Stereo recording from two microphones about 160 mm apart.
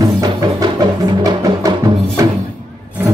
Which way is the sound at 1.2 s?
25° right (ahead or behind).